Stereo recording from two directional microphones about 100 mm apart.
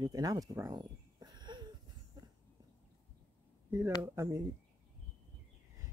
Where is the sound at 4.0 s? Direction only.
30° right (ahead or behind).